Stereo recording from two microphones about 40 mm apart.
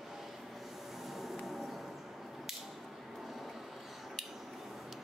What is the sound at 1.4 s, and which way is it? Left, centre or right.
Vehicle, centre.